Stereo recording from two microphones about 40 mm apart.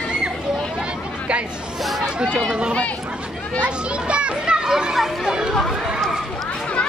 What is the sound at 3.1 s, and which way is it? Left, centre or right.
Chatter, right.